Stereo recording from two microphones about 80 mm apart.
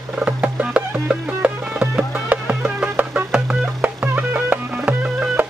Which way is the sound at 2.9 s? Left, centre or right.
Centre.